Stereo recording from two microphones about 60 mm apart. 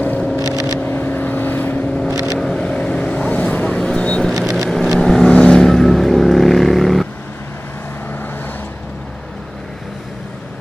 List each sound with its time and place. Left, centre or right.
0.0 s vehicle: left
0.4 s vehicle: left
0.8 s vehicle: left
2.3 s vehicle: centre
2.6 s vehicle: centre
3.3 s vehicle: left
4.3 s vehicle: centre